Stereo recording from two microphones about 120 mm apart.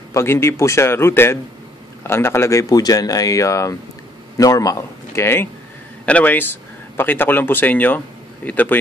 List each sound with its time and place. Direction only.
0.1 s a man's voice: 20° left (ahead or behind)